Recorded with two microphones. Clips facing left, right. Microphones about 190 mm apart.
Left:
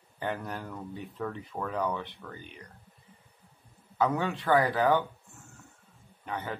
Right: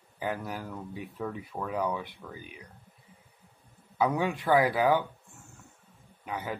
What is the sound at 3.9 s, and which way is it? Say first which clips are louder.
Speech: right 1 dB; 10° right (ahead or behind).